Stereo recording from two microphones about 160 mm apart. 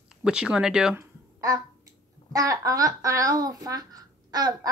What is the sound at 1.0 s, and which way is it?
A child's voice, 20° right (ahead or behind).